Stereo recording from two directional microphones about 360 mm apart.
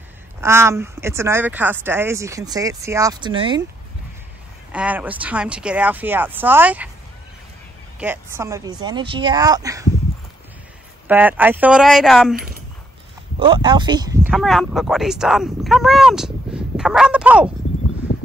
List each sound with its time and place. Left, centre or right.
0.4 s speech: centre
4.7 s speech: centre
8.0 s speech: centre
11.1 s speech: centre
13.4 s speech: centre
18.1 s a sound: left